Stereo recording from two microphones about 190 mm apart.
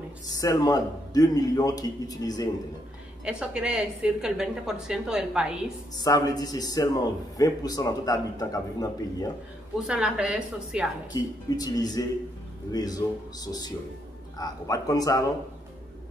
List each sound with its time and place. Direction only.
0.4 s a man's voice: 20° left (ahead or behind)
3.3 s a woman's voice: 5° right (ahead or behind)
6.0 s a man's voice: 20° left (ahead or behind)
9.8 s a woman's voice: 5° right (ahead or behind)
11.5 s a man's voice: 20° left (ahead or behind)